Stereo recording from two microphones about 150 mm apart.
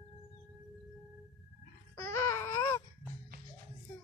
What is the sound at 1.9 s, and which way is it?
Baby cry, 20° left (ahead or behind).